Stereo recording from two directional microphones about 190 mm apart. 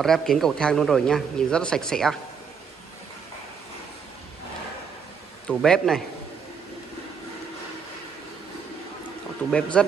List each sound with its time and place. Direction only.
0.0 s speech: centre (ahead or behind)
5.5 s speech: 5° left (ahead or behind)
9.5 s speech: 5° left (ahead or behind)